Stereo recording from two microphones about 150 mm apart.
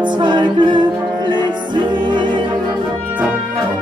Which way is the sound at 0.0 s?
30° right (ahead or behind).